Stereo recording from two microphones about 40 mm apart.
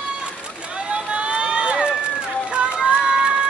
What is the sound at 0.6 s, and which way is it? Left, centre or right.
Run, right.